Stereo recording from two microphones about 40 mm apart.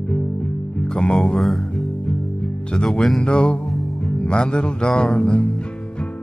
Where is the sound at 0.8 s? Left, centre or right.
Centre.